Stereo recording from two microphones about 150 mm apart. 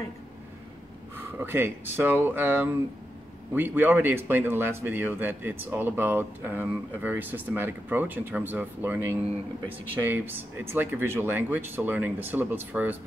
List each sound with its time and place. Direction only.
1.1 s speech: 15° right (ahead or behind)